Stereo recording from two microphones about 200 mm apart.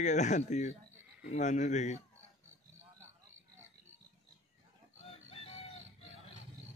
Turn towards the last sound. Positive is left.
turn(degrees=30)  # may be behind; listen again after turning